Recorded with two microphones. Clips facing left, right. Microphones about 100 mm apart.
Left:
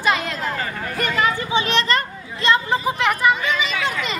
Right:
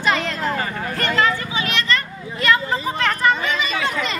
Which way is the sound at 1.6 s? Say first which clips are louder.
Left 6 dB; 30° left (ahead or behind).